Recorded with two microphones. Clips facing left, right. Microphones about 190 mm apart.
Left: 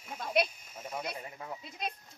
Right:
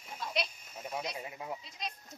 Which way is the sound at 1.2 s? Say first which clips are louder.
Right 2 dB; 15° right (ahead or behind).